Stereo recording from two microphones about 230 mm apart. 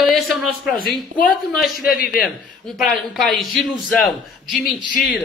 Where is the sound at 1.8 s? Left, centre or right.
Left.